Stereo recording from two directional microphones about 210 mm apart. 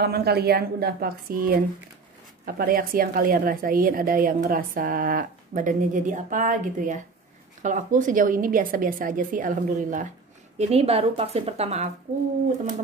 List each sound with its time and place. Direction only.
0.0 s a woman's voice: 50° right (ahead or behind); by 11.9 s 30° right (ahead or behind)